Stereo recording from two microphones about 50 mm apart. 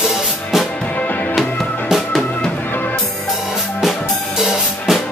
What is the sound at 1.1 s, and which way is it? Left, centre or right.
Music, left.